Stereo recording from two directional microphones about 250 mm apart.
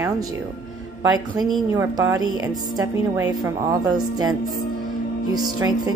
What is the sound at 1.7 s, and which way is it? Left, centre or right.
Speech, centre.